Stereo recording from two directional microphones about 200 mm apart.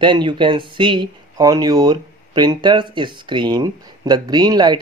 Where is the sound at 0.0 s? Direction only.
25° right (ahead or behind).